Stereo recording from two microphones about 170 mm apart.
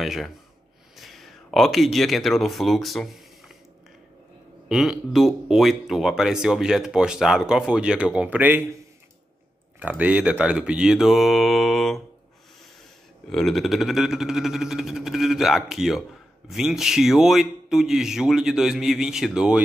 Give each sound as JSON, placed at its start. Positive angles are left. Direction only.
{"t": 0.0, "sound": "speech", "side_deg": 0}
{"t": 4.6, "sound": "speech", "side_deg": -5}
{"t": 9.8, "sound": "speech", "side_deg": -10}
{"t": 13.3, "sound": "speech", "side_deg": 0}